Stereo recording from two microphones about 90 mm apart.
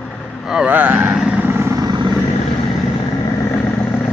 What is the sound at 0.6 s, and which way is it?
Speech, 20° right (ahead or behind).